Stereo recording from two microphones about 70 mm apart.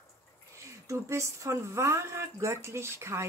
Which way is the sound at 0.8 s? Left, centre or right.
Right.